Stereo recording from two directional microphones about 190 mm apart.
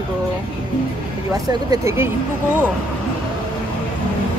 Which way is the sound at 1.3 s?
20° right (ahead or behind).